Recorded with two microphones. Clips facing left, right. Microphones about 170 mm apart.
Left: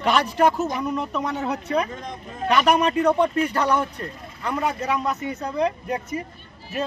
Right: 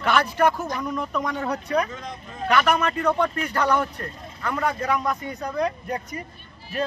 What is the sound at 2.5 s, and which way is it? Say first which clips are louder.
Speech: left 2 dB; 15° left (ahead or behind).